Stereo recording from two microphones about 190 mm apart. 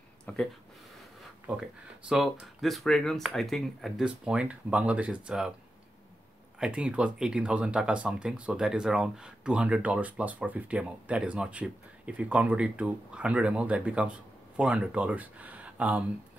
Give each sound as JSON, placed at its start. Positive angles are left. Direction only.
{"t": 0.2, "sound": "a sound", "side_deg": 5}
{"t": 1.5, "sound": "speech", "side_deg": -5}
{"t": 6.6, "sound": "speech", "side_deg": -5}